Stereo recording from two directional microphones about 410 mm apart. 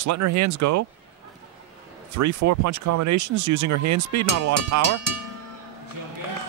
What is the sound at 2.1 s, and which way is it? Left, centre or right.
Speech, right.